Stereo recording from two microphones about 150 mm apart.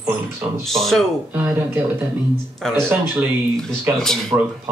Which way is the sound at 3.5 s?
5° left (ahead or behind).